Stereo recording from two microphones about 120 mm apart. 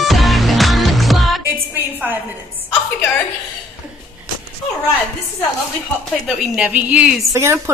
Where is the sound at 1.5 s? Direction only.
20° right (ahead or behind).